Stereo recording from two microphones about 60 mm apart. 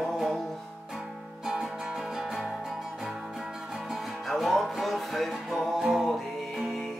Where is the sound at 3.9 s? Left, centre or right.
Centre.